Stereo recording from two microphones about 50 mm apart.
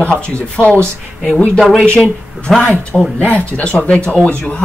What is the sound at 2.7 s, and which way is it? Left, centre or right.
Speech, centre.